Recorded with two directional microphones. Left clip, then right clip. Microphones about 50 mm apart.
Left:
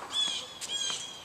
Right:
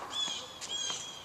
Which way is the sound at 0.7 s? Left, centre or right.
Left.